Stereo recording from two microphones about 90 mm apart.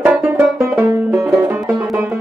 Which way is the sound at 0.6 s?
30° right (ahead or behind).